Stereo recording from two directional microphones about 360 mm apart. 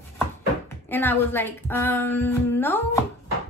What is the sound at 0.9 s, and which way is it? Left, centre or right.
A woman's voice, centre.